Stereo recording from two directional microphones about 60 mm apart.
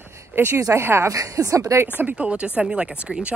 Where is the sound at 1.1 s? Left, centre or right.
Right.